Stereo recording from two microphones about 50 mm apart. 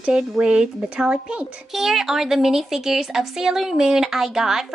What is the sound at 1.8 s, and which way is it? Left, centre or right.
A woman's voice, centre.